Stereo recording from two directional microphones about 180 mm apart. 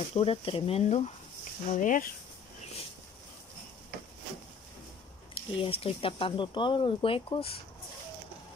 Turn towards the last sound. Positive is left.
turn(degrees=30)  # may be behind; listen again after turning